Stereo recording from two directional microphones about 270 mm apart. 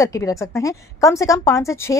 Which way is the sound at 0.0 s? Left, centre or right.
Centre.